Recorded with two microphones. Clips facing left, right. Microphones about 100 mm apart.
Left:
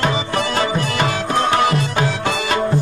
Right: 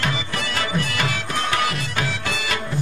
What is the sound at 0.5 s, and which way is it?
Music, 30° left (ahead or behind).